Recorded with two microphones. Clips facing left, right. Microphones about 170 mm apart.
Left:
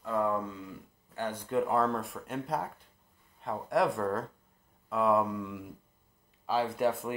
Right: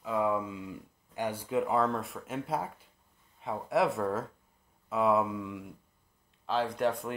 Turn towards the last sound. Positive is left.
turn(degrees=5)  # may be behind; listen again after turning